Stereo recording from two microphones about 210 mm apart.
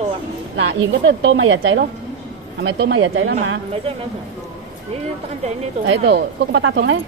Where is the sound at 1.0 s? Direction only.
60° right (ahead or behind).